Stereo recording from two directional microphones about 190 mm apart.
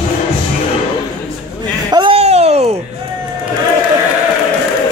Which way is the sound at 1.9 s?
25° right (ahead or behind).